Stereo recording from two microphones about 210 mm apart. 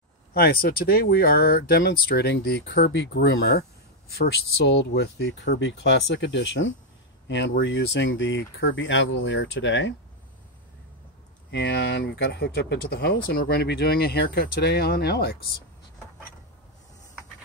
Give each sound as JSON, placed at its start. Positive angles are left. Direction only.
{"t": 0.3, "sound": "speech", "side_deg": 45}
{"t": 11.5, "sound": "speech", "side_deg": 55}